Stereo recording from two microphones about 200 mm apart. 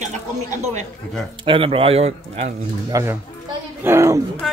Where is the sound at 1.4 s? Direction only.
25° right (ahead or behind).